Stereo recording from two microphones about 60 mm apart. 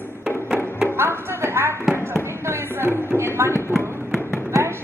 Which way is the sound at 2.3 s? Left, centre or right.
Right.